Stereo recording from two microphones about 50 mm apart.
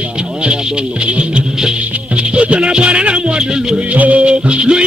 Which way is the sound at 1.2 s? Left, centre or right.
Right.